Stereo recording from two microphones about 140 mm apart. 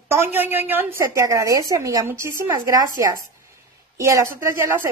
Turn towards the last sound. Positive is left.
turn(degrees=-20)  # may be behind; listen again after turning